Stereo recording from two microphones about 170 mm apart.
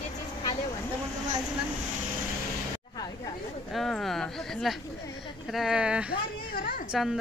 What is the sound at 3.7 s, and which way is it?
A woman's voice, centre (ahead or behind).